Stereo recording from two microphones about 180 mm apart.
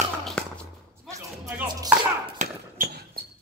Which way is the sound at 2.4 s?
40° right (ahead or behind).